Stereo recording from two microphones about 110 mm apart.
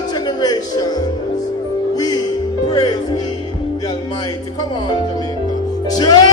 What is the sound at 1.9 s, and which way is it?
Music, 35° left (ahead or behind).